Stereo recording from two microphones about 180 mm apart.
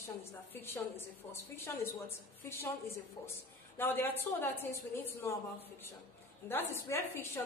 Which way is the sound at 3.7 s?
10° left (ahead or behind).